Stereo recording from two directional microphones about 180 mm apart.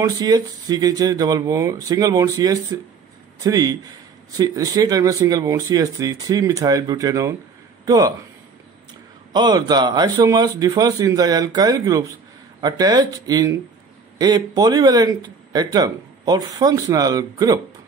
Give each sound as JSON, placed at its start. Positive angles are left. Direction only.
{"t": 0.0, "sound": "a man's voice", "side_deg": -20}
{"t": 9.3, "sound": "speech", "side_deg": -25}